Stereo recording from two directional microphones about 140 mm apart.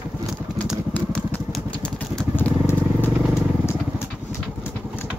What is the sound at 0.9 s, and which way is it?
Motorcycle, 10° left (ahead or behind).